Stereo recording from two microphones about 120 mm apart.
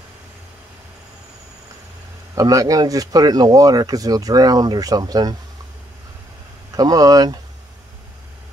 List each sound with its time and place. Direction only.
2.3 s speech: 30° right (ahead or behind)
6.8 s speech: 30° right (ahead or behind)